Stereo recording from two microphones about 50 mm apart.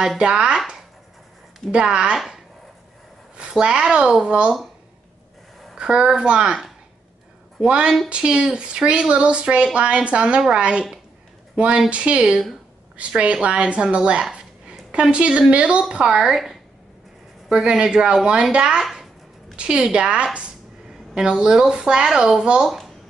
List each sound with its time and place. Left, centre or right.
0.2 s speech: centre
1.7 s speech: centre
2.1 s speech: centre
3.3 s speech: centre
5.8 s speech: centre
7.6 s a woman's voice: centre
14.3 s dog: right
15.5 s speech: right
18.8 s a child's voice: centre
19.5 s speech: right